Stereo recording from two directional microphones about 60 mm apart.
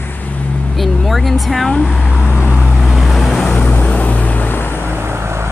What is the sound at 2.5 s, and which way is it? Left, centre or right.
Vehicle, right.